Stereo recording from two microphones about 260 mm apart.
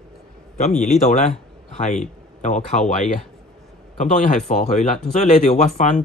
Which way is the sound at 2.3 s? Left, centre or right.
Left.